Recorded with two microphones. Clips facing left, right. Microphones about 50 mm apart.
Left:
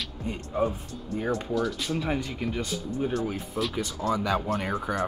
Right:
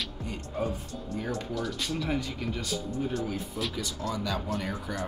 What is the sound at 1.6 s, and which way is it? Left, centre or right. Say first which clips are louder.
Speech: left 4 dB; centre.